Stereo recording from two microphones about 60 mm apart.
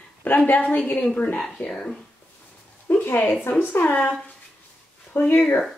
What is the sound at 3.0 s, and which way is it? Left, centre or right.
A woman's voice, left.